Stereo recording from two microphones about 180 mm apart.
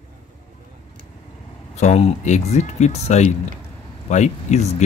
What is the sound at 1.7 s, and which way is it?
Speech, 40° left (ahead or behind).